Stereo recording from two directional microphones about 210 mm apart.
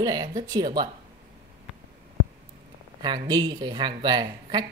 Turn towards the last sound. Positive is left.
turn(degrees=-20)  # may be behind; listen again after turning